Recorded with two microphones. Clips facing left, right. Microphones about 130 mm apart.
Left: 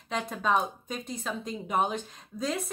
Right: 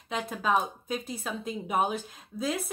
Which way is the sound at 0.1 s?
5° right (ahead or behind).